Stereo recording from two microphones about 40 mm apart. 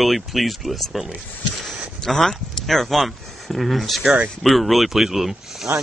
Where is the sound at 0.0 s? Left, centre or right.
Centre.